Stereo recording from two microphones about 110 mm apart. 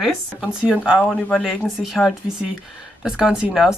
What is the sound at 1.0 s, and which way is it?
Speech, 10° left (ahead or behind).